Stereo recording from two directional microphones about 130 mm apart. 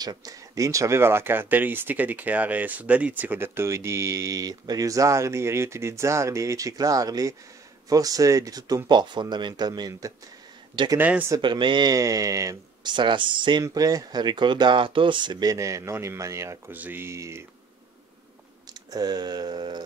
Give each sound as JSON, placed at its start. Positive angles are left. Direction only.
{"t": 0.0, "sound": "speech", "side_deg": -30}
{"t": 11.0, "sound": "speech", "side_deg": -15}
{"t": 11.3, "sound": "speech", "side_deg": -35}
{"t": 12.9, "sound": "speech", "side_deg": -40}
{"t": 18.7, "sound": "speech", "side_deg": -30}